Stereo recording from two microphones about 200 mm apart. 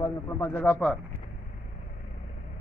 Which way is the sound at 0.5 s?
5° left (ahead or behind).